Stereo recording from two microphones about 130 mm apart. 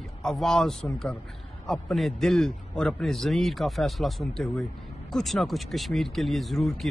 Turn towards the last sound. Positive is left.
turn(degrees=0)  # may be behind; listen again after turning